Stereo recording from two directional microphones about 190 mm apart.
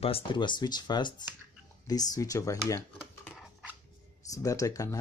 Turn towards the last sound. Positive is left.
turn(degrees=15)  # may be behind; listen again after turning